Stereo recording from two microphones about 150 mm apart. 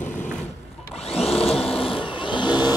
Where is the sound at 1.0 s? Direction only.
40° left (ahead or behind).